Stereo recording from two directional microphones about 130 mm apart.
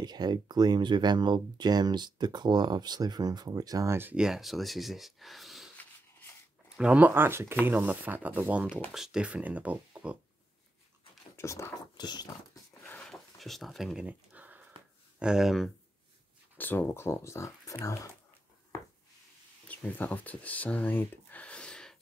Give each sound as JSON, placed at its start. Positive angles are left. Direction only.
{"t": 0.0, "sound": "speech", "side_deg": -30}
{"t": 4.2, "sound": "speech", "side_deg": 0}
{"t": 5.8, "sound": "a sound", "side_deg": 15}
{"t": 6.8, "sound": "speech", "side_deg": -10}
{"t": 8.6, "sound": "speech", "side_deg": 15}
{"t": 8.9, "sound": "speech", "side_deg": -5}
{"t": 11.3, "sound": "speech", "side_deg": 20}
{"t": 12.8, "sound": "dog", "side_deg": 15}
{"t": 13.1, "sound": "speech", "side_deg": 0}
{"t": 14.0, "sound": "a sound", "side_deg": -10}
{"t": 15.1, "sound": "speech", "side_deg": -5}
{"t": 16.5, "sound": "speech", "side_deg": 15}
{"t": 19.9, "sound": "speech", "side_deg": 15}